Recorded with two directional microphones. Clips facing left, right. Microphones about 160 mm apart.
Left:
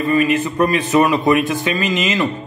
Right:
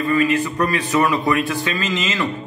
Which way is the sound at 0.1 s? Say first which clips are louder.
Left 2 dB; 20° left (ahead or behind).